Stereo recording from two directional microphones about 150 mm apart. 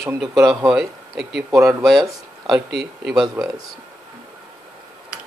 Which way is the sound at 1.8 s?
Centre (ahead or behind).